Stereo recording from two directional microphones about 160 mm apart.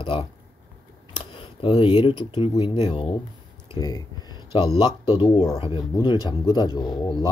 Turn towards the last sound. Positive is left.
turn(degrees=25)  # may be behind; listen again after turning